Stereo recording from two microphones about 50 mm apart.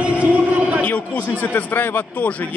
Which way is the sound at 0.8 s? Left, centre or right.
Left.